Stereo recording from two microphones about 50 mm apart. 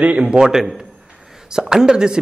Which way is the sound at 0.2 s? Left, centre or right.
Centre.